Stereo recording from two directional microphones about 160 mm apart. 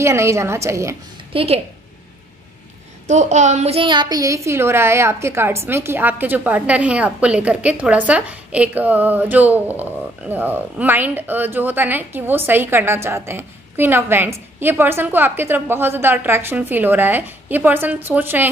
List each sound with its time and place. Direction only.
0.0 s a woman's voice: 15° right (ahead or behind)
1.3 s a woman's voice: 35° right (ahead or behind)
3.1 s a woman's voice: 45° right (ahead or behind); by 18.5 s 10° right (ahead or behind)